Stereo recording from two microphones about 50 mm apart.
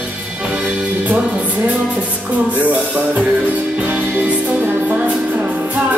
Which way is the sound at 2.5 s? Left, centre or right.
Right.